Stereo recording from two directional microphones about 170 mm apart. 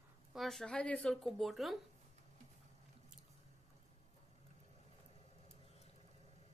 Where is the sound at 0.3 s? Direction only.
Centre (ahead or behind).